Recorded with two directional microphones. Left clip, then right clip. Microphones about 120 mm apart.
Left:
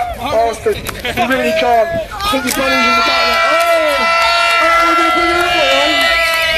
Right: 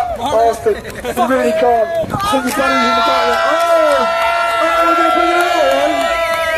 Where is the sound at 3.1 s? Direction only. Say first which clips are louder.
Left 1 dB; 45° right (ahead or behind); by 4.7 s 30° right (ahead or behind).